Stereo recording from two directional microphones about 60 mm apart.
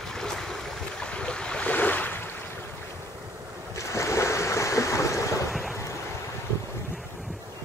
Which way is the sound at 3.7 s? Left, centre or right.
Left.